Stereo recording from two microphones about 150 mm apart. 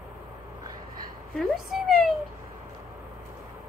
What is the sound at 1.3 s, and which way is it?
Speech, centre (ahead or behind).